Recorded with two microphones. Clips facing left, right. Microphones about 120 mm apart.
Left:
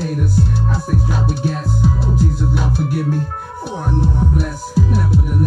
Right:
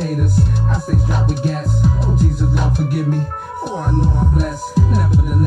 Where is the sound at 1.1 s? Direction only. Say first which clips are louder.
Even; 45° right (ahead or behind).